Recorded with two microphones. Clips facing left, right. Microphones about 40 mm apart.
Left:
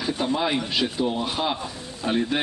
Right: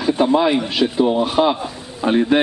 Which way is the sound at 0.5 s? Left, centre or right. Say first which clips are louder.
Right 7 dB; centre.